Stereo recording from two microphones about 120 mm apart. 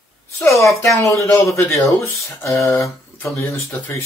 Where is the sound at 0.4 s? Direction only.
25° left (ahead or behind).